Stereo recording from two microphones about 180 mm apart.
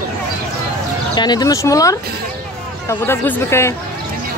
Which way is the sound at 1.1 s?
25° left (ahead or behind).